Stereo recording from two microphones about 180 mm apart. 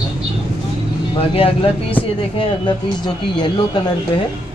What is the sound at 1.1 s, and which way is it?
Speech, 30° left (ahead or behind).